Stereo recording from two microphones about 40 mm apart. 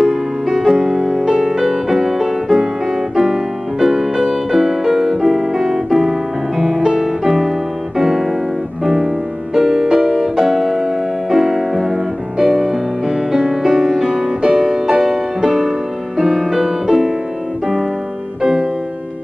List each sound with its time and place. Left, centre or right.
0.1 s music: centre
1.6 s music: centre
4.5 s piano: centre
7.2 s music: centre
8.0 s piano: centre
8.8 s music: centre
18.4 s music: centre